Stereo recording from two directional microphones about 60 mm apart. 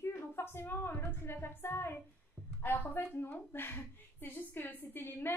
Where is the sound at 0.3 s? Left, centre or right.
Left.